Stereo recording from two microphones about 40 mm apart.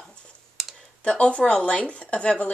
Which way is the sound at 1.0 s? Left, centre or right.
Left.